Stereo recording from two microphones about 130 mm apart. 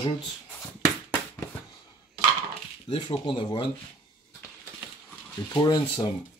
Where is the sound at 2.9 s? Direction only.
35° left (ahead or behind).